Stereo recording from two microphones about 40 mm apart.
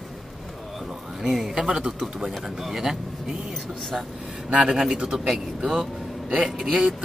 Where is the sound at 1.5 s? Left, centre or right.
Centre.